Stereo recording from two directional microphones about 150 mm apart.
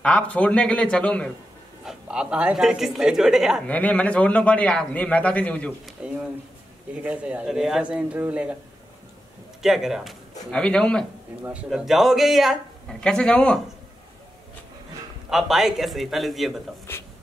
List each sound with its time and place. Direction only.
0.0 s a man's voice: 10° left (ahead or behind)
1.9 s speech: 5° right (ahead or behind)
3.6 s a man's voice: 10° left (ahead or behind)
5.9 s speech: 5° right (ahead or behind)
9.6 s a man's voice: centre (ahead or behind)
11.4 s speech: 5° right (ahead or behind)
15.2 s speech: centre (ahead or behind)
16.9 s a man's voice: 15° left (ahead or behind)